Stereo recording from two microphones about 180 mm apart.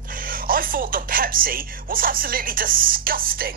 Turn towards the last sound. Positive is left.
turn(degrees=-55)  # may be behind; listen again after turning